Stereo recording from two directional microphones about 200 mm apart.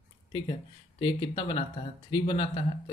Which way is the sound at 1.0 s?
25° left (ahead or behind).